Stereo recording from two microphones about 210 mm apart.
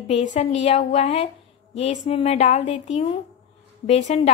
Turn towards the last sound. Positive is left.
turn(degrees=30)  # may be behind; listen again after turning